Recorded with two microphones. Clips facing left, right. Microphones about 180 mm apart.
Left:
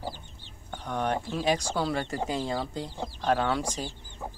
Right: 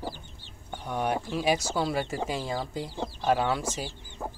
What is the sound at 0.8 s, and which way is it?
Speech, 10° right (ahead or behind).